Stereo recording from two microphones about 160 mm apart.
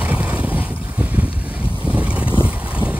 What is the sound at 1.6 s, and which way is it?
Boat, 10° left (ahead or behind).